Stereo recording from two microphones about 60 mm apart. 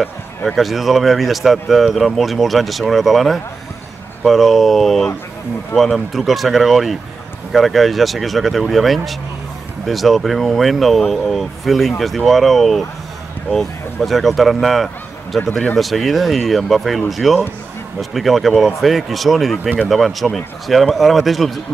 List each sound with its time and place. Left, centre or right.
0.5 s speech: centre